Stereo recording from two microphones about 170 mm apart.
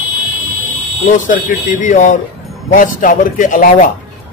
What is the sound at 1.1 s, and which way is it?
Speech, 50° left (ahead or behind).